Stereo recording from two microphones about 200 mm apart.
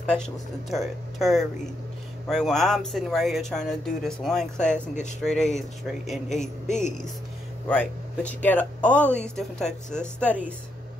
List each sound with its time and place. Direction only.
0.0 s speech: 5° left (ahead or behind)
6.4 s speech: 35° left (ahead or behind)
7.6 s speech: 10° left (ahead or behind)